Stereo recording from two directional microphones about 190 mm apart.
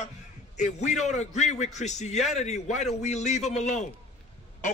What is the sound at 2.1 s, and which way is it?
Speech, centre (ahead or behind).